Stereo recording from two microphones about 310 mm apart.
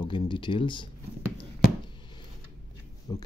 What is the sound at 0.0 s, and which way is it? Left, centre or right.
Speech, centre.